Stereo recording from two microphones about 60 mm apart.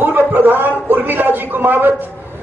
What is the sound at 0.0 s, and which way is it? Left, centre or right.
A man's voice, right.